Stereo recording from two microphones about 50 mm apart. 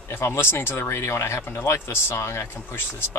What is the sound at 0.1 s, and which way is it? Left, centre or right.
Speech, left.